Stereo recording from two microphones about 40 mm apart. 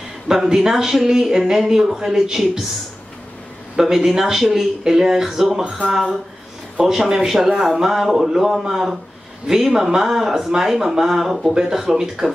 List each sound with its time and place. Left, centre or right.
0.3 s speech: centre
3.7 s speech: centre
6.8 s speech: centre
11.5 s speech: centre